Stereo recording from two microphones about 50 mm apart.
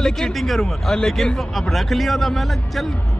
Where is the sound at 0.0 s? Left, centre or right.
Centre.